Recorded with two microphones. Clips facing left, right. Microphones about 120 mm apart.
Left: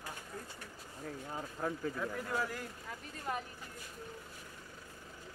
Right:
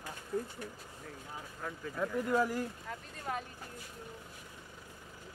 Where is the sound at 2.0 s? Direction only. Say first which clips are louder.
Right 10 dB; 15° right (ahead or behind).